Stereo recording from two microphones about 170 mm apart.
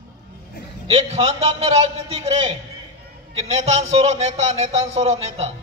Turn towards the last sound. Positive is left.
turn(degrees=-35)  # may be behind; listen again after turning